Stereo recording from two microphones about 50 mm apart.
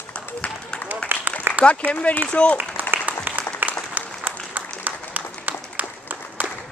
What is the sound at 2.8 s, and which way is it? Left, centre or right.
Applause, right.